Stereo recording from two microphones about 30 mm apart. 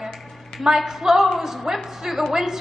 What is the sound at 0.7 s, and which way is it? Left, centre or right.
Speech, right.